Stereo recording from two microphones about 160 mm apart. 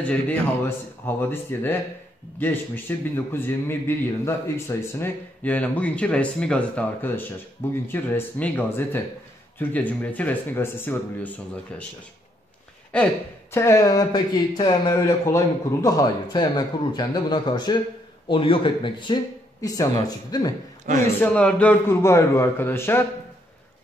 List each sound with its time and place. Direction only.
0.0 s a man's voice: 10° left (ahead or behind)
12.9 s speech: 10° left (ahead or behind)
21.2 s a man's voice: 5° left (ahead or behind)